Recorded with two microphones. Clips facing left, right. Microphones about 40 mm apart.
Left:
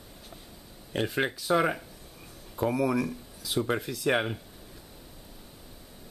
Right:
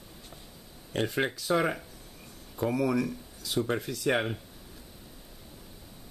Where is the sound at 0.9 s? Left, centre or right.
Centre.